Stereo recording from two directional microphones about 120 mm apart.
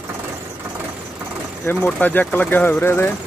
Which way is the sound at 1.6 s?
15° left (ahead or behind).